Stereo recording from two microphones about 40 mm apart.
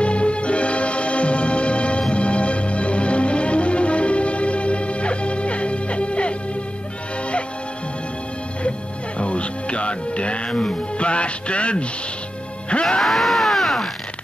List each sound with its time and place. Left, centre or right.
0.0 s music: left
9.2 s speech: left
13.0 s a sound: centre